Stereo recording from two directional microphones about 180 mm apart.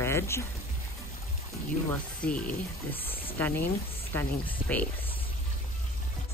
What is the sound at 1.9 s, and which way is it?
Speech, 5° left (ahead or behind).